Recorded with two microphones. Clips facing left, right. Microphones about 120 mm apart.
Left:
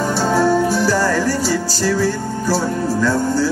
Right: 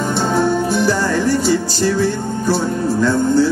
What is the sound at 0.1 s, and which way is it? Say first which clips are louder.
Music: left 1 dB; 20° right (ahead or behind).